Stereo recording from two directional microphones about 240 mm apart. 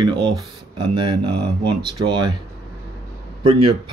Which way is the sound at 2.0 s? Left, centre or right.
Centre.